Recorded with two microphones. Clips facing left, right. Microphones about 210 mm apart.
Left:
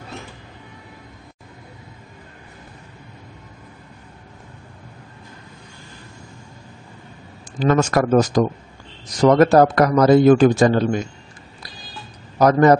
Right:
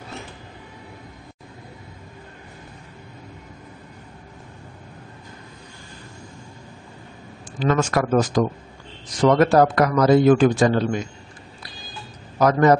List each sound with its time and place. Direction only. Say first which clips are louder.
7.6 s a man's voice: left 3 dB; 40° left (ahead or behind)
12.4 s a man's voice: left 3 dB; 40° left (ahead or behind)